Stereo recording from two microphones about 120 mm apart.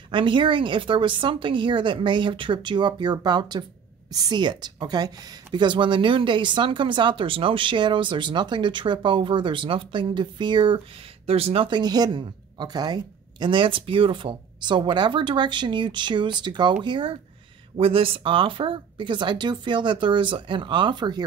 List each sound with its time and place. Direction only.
0.1 s a woman's voice: 45° right (ahead or behind)
11.2 s a woman's voice: 55° right (ahead or behind); by 21.2 s 40° right (ahead or behind)